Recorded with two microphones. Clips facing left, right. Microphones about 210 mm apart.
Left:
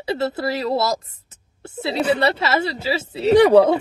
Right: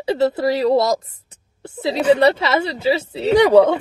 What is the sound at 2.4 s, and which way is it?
Speech, 30° right (ahead or behind).